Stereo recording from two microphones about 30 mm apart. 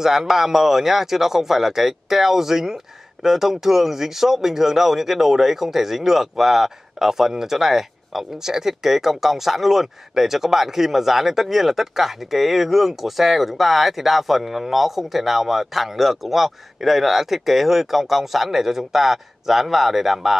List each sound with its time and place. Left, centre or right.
0.0 s speech: centre